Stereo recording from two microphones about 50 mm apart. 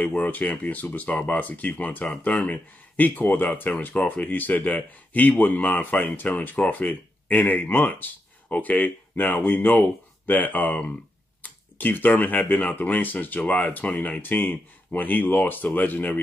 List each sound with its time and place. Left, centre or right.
0.0 s speech: left